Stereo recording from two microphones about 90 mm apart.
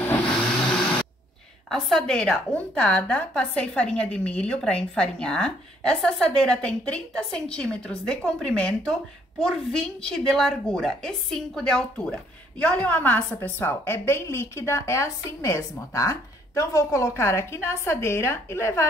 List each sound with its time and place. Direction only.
1.7 s a woman's voice: 5° left (ahead or behind); by 18.9 s 30° left (ahead or behind)